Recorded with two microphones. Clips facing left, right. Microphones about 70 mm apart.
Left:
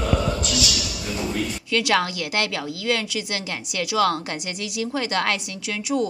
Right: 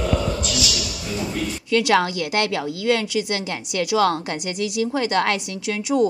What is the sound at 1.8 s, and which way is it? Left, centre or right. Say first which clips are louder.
A woman's voice: right 3 dB; right.